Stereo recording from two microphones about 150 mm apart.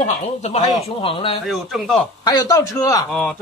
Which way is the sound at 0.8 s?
35° left (ahead or behind).